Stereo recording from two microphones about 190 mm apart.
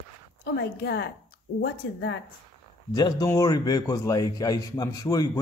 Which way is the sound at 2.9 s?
20° left (ahead or behind).